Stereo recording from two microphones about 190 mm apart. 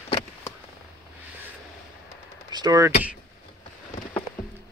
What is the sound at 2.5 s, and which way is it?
Speech, 20° right (ahead or behind).